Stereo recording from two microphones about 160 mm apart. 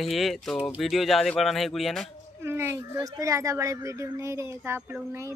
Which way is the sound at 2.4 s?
15° right (ahead or behind).